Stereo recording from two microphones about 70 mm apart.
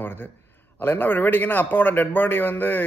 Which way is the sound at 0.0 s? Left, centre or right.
Left.